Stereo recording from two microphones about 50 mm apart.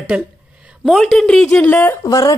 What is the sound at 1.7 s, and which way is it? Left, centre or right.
Speech, left.